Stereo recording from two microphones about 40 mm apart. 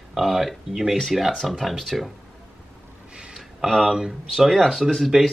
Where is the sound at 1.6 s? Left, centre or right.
Centre.